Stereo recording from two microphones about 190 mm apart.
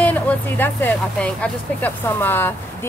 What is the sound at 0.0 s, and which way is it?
Speech, 10° left (ahead or behind).